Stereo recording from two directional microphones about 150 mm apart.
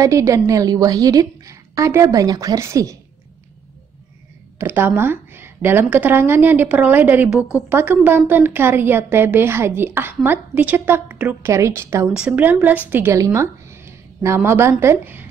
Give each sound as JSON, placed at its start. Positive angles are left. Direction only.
{"t": 0.0, "sound": "a woman's voice", "side_deg": -20}
{"t": 4.6, "sound": "a woman's voice", "side_deg": -15}